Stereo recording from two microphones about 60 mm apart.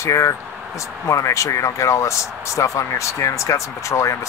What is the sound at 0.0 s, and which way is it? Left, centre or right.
Speech, left.